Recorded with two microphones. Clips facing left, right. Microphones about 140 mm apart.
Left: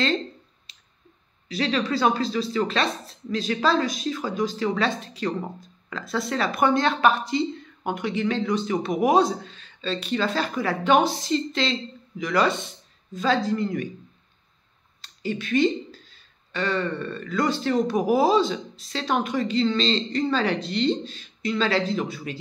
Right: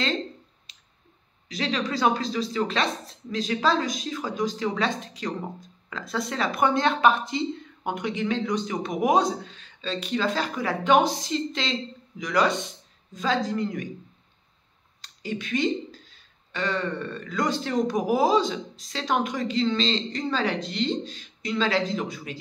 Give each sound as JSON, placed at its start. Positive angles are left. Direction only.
{"t": 1.5, "sound": "speech", "side_deg": -15}
{"t": 15.0, "sound": "a sound", "side_deg": -15}
{"t": 16.5, "sound": "speech", "side_deg": -15}